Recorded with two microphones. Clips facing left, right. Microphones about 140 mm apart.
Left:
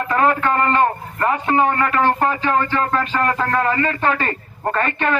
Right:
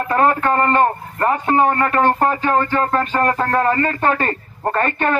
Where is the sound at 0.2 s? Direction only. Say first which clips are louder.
Right 1 dB; 40° right (ahead or behind).